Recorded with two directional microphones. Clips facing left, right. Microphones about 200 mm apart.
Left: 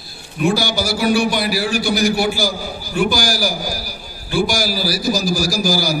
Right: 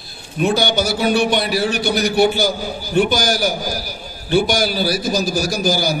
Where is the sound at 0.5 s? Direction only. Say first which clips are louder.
Right 2 dB; 20° right (ahead or behind).